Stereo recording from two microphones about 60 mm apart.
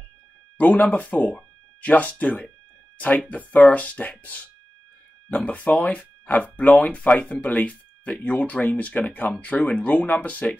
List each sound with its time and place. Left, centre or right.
0.6 s speech: left